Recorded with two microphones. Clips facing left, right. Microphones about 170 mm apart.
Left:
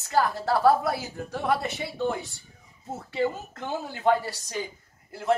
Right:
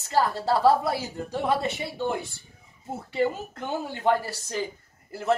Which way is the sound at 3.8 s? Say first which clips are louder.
Left 1 dB; centre (ahead or behind).